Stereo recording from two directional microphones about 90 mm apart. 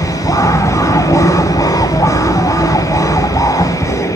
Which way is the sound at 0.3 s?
35° left (ahead or behind).